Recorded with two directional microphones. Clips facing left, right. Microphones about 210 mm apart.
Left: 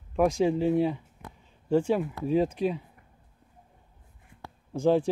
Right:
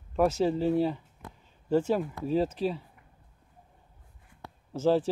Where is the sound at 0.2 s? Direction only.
10° left (ahead or behind).